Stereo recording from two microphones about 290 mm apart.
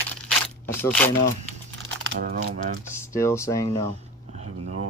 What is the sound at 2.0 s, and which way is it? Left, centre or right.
Speech, right.